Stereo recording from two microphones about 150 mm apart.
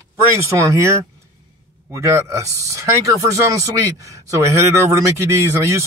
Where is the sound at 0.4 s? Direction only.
20° right (ahead or behind).